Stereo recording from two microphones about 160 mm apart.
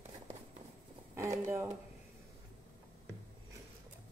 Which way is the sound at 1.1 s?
15° right (ahead or behind).